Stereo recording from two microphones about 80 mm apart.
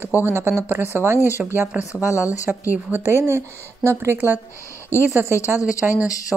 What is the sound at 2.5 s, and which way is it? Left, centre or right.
Speech, centre.